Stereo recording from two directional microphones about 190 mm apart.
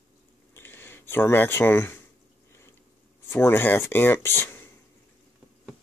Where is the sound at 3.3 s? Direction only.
10° left (ahead or behind).